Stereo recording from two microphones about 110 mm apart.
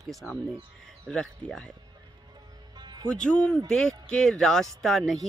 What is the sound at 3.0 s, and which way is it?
Speech, 10° left (ahead or behind).